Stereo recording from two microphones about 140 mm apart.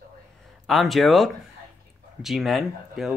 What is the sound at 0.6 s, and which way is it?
Speech, centre (ahead or behind).